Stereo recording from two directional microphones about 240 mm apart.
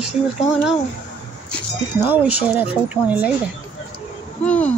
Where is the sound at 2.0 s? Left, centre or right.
Centre.